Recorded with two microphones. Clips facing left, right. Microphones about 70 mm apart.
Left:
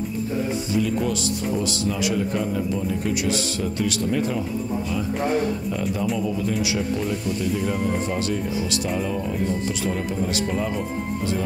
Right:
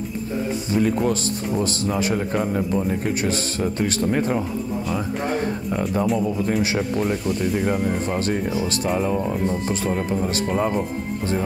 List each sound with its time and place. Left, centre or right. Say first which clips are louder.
0.7 s a man's voice: right 4 dB; right